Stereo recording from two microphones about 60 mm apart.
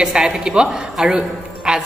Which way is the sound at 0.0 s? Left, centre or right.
Centre.